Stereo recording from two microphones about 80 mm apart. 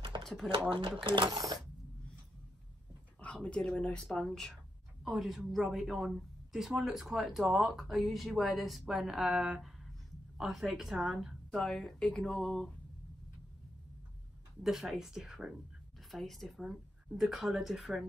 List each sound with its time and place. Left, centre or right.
0.1 s a sound: right
0.7 s speech: right
1.3 s speech: right
3.2 s speech: centre
9.6 s a sound: centre
11.5 s speech: centre
14.6 s speech: centre